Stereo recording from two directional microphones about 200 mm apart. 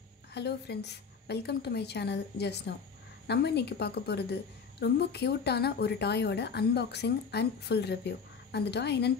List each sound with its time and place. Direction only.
0.3 s a woman's voice: 55° left (ahead or behind)